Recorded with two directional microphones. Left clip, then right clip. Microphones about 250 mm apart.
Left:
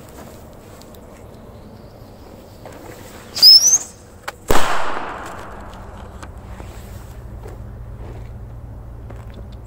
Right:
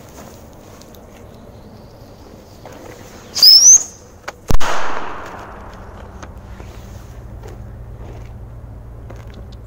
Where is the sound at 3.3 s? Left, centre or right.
Centre.